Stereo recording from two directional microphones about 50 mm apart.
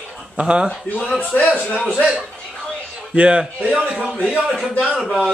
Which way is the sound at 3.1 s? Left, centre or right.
Right.